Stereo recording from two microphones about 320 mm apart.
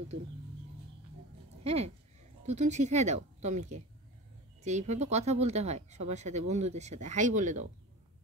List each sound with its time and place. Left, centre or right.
1.6 s speech: centre